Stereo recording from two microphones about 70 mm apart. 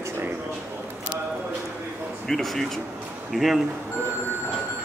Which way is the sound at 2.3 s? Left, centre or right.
Centre.